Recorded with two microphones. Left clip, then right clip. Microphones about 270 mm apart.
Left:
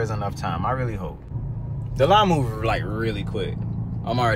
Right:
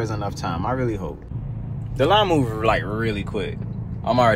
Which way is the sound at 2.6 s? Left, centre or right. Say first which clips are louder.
Right 4 dB; centre.